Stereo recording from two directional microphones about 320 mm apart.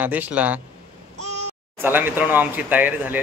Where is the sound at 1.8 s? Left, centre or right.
Centre.